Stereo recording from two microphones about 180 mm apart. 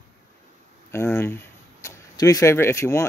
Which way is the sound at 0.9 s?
15° left (ahead or behind).